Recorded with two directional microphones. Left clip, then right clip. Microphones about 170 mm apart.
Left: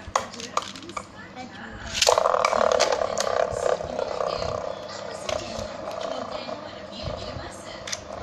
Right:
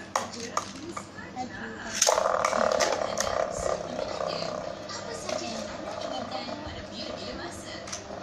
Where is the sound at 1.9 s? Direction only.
15° left (ahead or behind).